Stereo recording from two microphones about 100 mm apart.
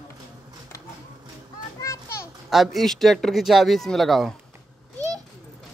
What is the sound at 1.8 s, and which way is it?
Children playing, 30° left (ahead or behind).